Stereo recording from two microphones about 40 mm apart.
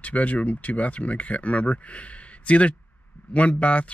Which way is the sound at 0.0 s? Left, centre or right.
Left.